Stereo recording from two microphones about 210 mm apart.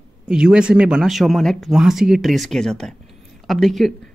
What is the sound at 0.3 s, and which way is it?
Speech, 5° right (ahead or behind).